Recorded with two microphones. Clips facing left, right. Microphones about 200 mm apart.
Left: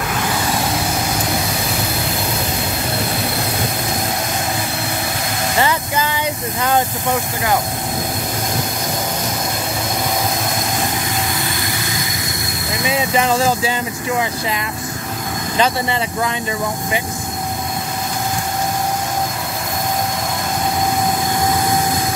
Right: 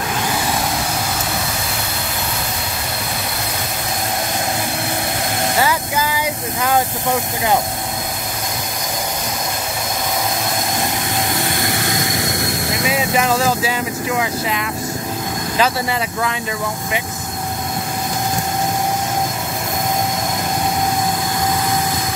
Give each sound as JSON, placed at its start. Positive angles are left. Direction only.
{"t": 5.6, "sound": "vehicle", "side_deg": -5}
{"t": 12.0, "sound": "vehicle", "side_deg": -75}
{"t": 12.8, "sound": "speech", "side_deg": -5}
{"t": 15.5, "sound": "speech", "side_deg": -5}